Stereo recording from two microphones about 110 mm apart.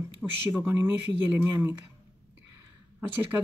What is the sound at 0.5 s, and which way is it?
Speech, 25° right (ahead or behind).